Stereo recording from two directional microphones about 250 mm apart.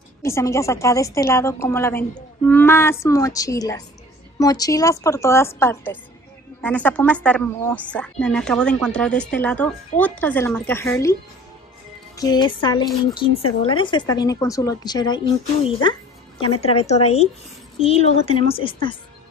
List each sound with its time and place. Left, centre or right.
0.2 s a woman's voice: centre
12.2 s a woman's voice: centre